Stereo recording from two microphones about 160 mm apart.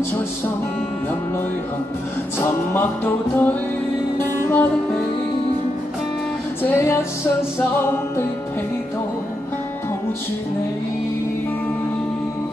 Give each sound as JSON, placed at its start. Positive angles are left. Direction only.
{"t": 2.4, "sound": "music", "side_deg": 15}
{"t": 6.6, "sound": "music", "side_deg": 15}